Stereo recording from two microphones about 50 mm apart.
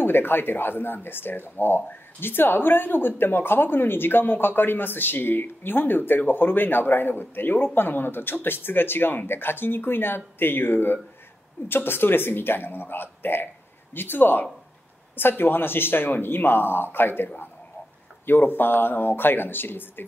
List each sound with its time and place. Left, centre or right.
0.0 s speech: left